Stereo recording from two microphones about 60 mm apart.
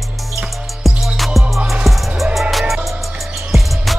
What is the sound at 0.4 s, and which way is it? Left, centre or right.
Music, centre.